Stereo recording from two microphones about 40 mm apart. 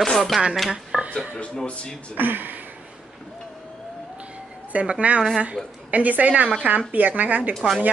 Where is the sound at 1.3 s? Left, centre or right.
Left.